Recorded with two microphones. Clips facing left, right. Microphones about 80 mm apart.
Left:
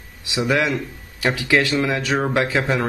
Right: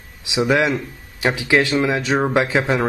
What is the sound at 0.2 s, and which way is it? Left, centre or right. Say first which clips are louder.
Speech: right 3 dB; centre.